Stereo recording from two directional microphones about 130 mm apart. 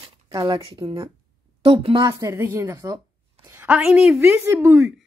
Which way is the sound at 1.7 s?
40° right (ahead or behind).